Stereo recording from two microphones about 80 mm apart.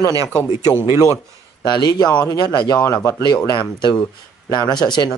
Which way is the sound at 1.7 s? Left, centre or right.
Left.